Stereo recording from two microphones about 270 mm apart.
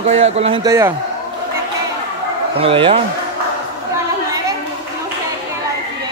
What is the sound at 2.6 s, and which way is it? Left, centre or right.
Speech, centre.